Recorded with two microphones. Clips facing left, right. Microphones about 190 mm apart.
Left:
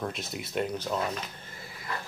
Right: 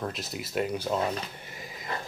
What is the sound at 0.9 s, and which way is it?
Speech, 30° right (ahead or behind).